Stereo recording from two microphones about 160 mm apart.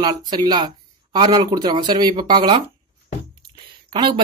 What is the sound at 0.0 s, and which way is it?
Speech, 25° right (ahead or behind).